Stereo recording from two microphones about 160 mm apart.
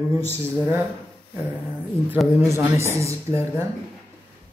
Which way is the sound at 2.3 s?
15° right (ahead or behind).